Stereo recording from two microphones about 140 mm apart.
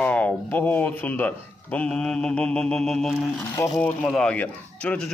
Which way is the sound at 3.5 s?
25° left (ahead or behind).